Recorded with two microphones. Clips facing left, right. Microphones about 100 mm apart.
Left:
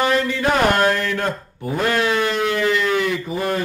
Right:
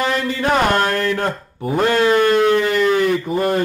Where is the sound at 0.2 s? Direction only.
40° right (ahead or behind).